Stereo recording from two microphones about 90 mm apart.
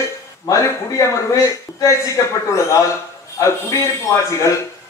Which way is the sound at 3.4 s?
35° left (ahead or behind).